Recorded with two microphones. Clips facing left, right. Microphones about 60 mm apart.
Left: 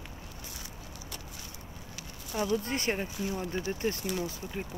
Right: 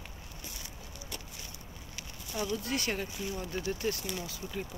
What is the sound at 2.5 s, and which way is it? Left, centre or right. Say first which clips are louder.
Speech: left 3 dB; left.